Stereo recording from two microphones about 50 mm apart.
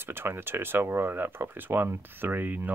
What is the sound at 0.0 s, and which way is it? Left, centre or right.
Speech, right.